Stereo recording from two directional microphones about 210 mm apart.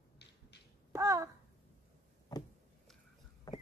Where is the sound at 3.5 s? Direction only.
15° left (ahead or behind).